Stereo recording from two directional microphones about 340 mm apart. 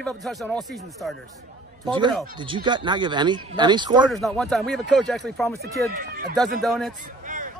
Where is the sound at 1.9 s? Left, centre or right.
Centre.